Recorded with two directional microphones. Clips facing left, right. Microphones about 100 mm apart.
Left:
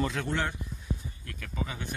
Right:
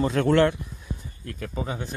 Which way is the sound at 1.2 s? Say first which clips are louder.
Right 7 dB; 35° right (ahead or behind).